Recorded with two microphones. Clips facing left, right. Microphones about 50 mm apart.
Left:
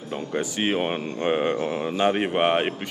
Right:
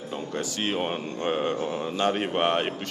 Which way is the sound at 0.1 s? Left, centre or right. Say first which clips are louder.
Left 4 dB; centre.